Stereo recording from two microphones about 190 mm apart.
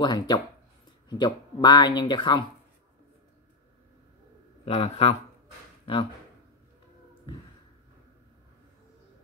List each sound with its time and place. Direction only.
0.0 s speech: 20° left (ahead or behind)
4.6 s speech: 30° left (ahead or behind)